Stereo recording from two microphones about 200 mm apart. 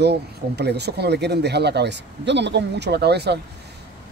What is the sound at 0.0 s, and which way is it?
Speech, 55° right (ahead or behind).